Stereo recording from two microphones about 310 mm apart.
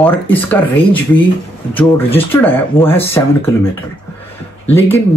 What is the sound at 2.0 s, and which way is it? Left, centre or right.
Speech, centre.